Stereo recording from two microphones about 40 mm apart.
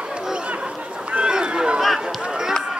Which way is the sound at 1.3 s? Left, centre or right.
Right.